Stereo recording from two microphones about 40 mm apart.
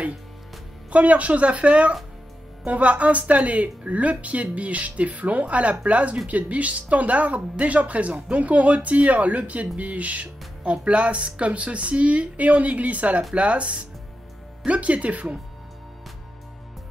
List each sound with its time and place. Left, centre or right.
0.9 s speech: right